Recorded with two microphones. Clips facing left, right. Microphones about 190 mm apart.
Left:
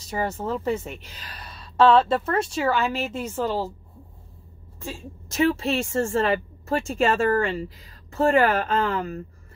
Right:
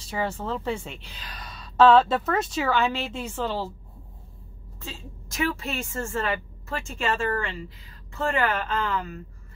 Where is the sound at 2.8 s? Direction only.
35° left (ahead or behind).